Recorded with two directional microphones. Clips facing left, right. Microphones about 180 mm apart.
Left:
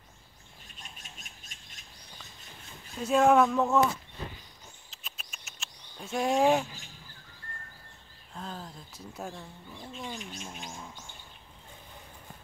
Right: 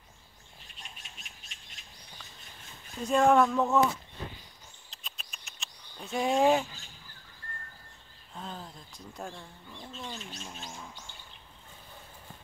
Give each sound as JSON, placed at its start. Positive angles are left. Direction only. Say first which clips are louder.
{"t": 0.7, "sound": "bird", "louder": "left 1 dB", "side_deg": 45}
{"t": 3.0, "sound": "speech", "louder": "left 1 dB", "side_deg": 0}
{"t": 4.9, "sound": "a sound", "louder": "right 2 dB", "side_deg": 0}
{"t": 8.4, "sound": "speech", "louder": "left 1 dB", "side_deg": 0}
{"t": 9.9, "sound": "bird", "louder": "left 2 dB", "side_deg": 15}